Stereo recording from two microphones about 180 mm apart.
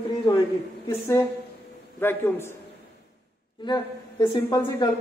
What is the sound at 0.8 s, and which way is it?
A man's voice, 15° left (ahead or behind).